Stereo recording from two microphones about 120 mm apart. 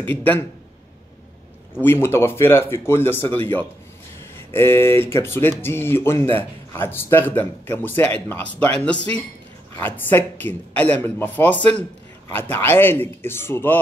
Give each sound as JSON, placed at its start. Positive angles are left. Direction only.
{"t": 0.0, "sound": "speech", "side_deg": 15}
{"t": 1.8, "sound": "speech", "side_deg": 20}